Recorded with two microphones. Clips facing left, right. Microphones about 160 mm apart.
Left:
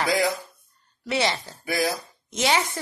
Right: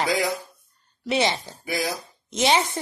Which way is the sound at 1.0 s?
20° right (ahead or behind).